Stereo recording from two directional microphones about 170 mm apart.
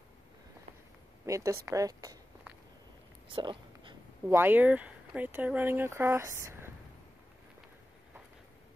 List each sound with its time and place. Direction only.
1.2 s speech: 20° right (ahead or behind)
3.3 s whispering: 30° right (ahead or behind)
4.3 s speech: 10° right (ahead or behind)